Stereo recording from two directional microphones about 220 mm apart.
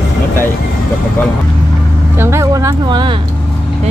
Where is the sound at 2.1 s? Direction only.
10° right (ahead or behind).